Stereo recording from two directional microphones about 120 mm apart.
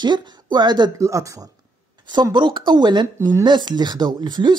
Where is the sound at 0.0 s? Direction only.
40° right (ahead or behind).